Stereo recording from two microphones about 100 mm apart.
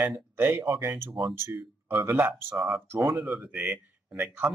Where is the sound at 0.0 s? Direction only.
25° right (ahead or behind).